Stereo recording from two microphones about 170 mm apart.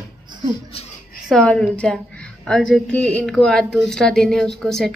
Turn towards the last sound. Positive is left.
turn(degrees=5)  # may be behind; listen again after turning